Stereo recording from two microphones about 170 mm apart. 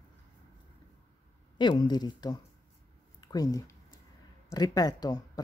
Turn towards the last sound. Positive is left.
turn(degrees=25)  # may be behind; listen again after turning